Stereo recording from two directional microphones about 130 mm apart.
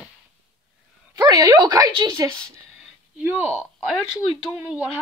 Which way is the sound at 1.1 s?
30° right (ahead or behind).